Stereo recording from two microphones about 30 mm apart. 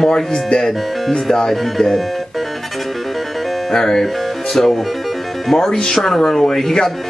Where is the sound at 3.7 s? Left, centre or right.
Centre.